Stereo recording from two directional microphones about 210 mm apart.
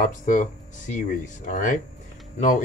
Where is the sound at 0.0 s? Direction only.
40° left (ahead or behind).